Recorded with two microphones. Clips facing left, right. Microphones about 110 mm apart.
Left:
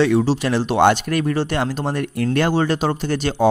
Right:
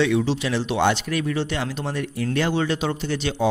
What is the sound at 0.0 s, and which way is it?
Speech, 40° left (ahead or behind).